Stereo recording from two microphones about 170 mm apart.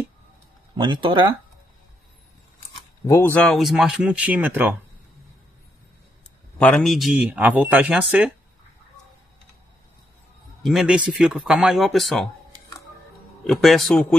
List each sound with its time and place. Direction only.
0.7 s speech: 30° right (ahead or behind)
3.1 s speech: 10° left (ahead or behind); by 4.7 s 10° right (ahead or behind)
6.6 s speech: 5° left (ahead or behind)
10.6 s speech: centre (ahead or behind)
13.4 s speech: centre (ahead or behind)